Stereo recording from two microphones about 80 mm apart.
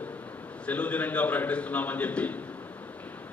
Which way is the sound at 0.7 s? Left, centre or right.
Centre.